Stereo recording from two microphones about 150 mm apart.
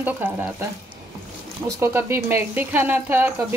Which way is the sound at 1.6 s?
15° right (ahead or behind).